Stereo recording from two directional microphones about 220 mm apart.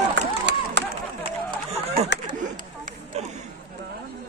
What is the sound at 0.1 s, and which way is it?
Run, 50° right (ahead or behind).